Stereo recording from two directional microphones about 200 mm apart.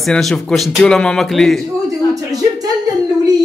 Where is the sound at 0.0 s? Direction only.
Centre (ahead or behind).